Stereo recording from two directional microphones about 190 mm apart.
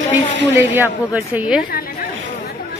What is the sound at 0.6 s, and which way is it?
Speech, 10° right (ahead or behind).